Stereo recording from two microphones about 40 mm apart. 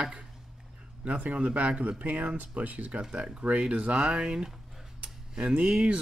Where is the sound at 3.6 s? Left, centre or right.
Right.